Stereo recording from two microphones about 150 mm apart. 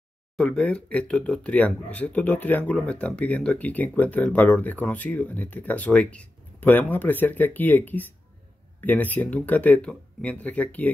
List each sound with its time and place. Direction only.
0.4 s speech: 10° left (ahead or behind)